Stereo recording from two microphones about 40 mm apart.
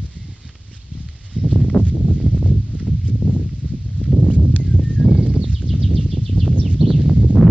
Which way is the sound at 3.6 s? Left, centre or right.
Centre.